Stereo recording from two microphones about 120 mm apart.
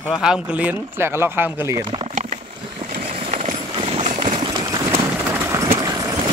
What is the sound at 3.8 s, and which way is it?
Run, 55° right (ahead or behind).